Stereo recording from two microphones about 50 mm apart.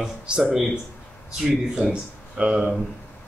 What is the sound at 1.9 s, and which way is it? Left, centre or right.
Speech, centre.